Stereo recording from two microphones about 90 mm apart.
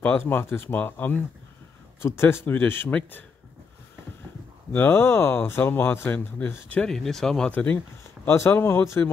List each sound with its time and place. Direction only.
0.0 s speech: 20° left (ahead or behind)
4.7 s speech: 25° left (ahead or behind)
6.9 s speech: 5° left (ahead or behind)
7.5 s speech: 20° left (ahead or behind)